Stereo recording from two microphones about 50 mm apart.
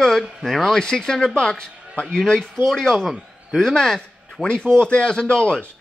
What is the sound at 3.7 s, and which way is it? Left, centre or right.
A man's voice, centre.